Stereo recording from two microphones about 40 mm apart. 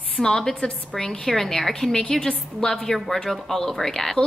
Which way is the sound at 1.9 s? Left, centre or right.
Left.